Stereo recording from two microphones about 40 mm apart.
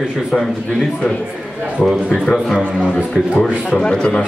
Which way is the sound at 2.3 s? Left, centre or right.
Centre.